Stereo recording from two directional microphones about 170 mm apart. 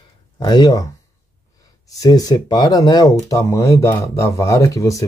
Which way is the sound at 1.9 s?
20° left (ahead or behind).